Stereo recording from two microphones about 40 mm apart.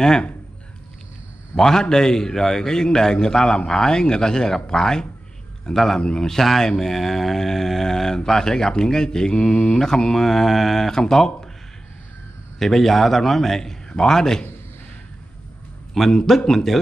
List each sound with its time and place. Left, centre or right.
1.6 s a man's voice: centre
12.5 s a man's voice: centre
16.0 s a man's voice: centre